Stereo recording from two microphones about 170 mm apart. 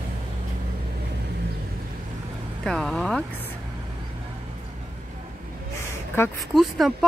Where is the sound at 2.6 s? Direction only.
Centre (ahead or behind).